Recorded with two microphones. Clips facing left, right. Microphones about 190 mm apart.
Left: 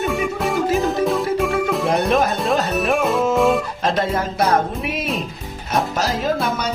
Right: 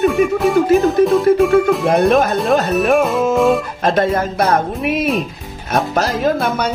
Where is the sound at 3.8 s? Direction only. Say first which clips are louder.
Right 6 dB; 55° right (ahead or behind).